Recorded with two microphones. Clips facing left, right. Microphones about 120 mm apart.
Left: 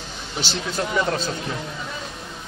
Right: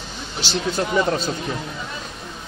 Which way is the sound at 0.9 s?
20° right (ahead or behind).